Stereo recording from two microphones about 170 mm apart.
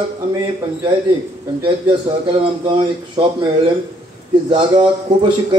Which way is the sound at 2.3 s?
30° right (ahead or behind).